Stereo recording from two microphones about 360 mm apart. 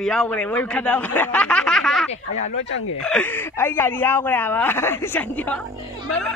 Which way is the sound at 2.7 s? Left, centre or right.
Left.